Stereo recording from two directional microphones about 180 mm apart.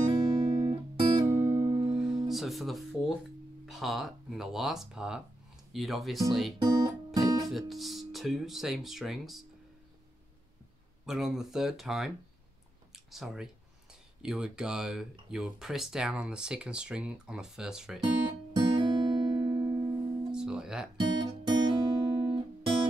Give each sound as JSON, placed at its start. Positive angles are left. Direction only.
{"t": 0.3, "sound": "music", "side_deg": -40}
{"t": 1.9, "sound": "guitar", "side_deg": -5}
{"t": 3.6, "sound": "speech", "side_deg": 0}
{"t": 6.6, "sound": "music", "side_deg": -20}
{"t": 7.4, "sound": "speech", "side_deg": 0}
{"t": 11.1, "sound": "speech", "side_deg": 0}
{"t": 18.0, "sound": "music", "side_deg": -25}
{"t": 20.2, "sound": "guitar", "side_deg": -5}
{"t": 21.0, "sound": "guitar", "side_deg": -25}